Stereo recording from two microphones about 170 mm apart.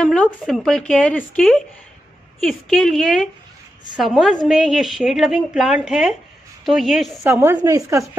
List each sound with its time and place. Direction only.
0.0 s a woman's voice: 5° left (ahead or behind)
7.2 s a woman's voice: 10° right (ahead or behind)